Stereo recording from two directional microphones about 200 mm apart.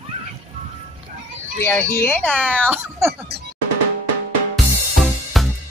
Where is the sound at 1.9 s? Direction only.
10° left (ahead or behind).